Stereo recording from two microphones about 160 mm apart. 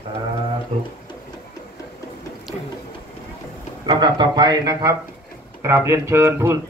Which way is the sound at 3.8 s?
25° right (ahead or behind).